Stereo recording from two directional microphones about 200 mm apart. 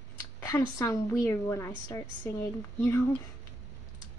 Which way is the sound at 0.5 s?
15° left (ahead or behind).